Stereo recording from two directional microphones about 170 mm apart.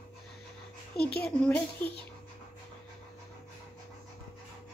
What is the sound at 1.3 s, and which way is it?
Speech, 5° left (ahead or behind).